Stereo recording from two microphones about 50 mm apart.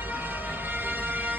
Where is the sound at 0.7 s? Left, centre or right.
Right.